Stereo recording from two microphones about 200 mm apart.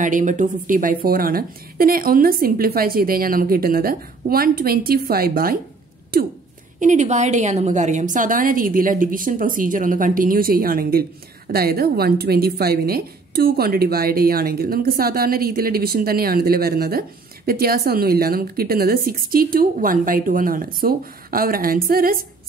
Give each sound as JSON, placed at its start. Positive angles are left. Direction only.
{"t": 0.0, "sound": "a woman's voice", "side_deg": -40}
{"t": 6.8, "sound": "a woman's voice", "side_deg": -35}